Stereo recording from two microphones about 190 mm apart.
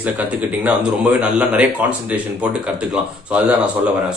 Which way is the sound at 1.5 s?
5° right (ahead or behind).